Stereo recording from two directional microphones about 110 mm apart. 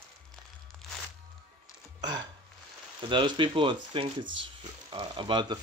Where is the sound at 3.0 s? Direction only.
45° right (ahead or behind).